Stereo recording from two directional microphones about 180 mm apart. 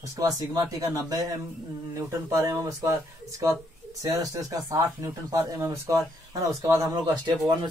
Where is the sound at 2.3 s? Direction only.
15° right (ahead or behind).